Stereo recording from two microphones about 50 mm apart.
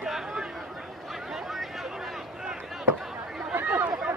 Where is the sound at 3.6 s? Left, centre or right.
Right.